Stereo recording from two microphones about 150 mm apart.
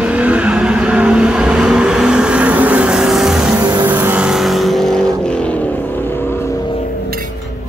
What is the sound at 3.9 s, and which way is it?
Vehicle, 10° right (ahead or behind).